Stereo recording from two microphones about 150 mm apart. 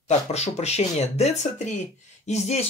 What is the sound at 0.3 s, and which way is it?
Speech, 45° left (ahead or behind).